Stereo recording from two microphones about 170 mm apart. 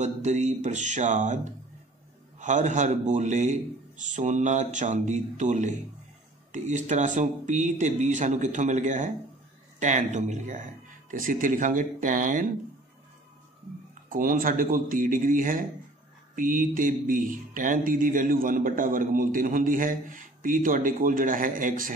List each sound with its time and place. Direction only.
0.0 s speech: 45° right (ahead or behind)
14.0 s speech: 55° right (ahead or behind)